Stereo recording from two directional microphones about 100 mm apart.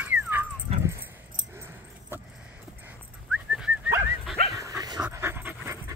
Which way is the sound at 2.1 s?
20° right (ahead or behind).